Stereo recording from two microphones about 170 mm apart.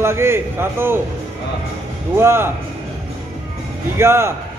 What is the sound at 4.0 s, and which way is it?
Speech, 15° right (ahead or behind).